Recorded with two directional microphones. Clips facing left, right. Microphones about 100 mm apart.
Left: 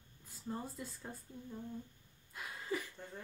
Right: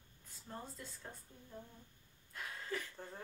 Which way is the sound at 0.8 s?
5° left (ahead or behind).